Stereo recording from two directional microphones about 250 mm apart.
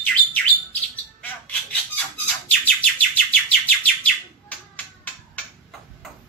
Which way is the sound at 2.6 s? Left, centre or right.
Centre.